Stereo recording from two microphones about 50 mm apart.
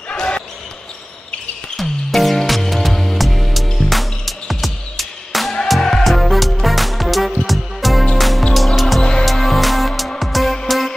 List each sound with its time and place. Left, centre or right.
0.1 s basketball bounce: centre
1.8 s music: centre